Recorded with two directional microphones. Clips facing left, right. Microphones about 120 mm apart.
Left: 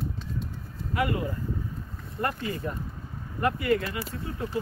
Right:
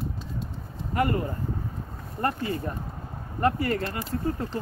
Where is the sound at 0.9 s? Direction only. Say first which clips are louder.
Right 2 dB; 45° right (ahead or behind).